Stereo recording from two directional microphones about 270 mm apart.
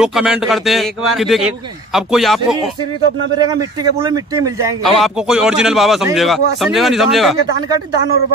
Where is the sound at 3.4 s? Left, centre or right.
Centre.